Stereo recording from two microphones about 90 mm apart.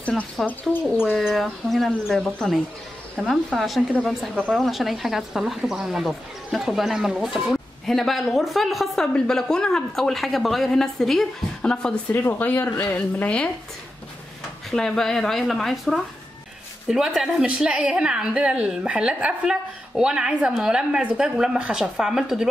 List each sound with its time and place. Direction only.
0.5 s speech: 20° left (ahead or behind)
1.1 s speech: centre (ahead or behind)
12.1 s speech: 20° left (ahead or behind)
14.7 s a woman's voice: 5° left (ahead or behind)